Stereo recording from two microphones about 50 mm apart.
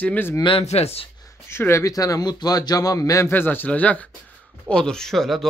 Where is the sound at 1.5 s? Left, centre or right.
Left.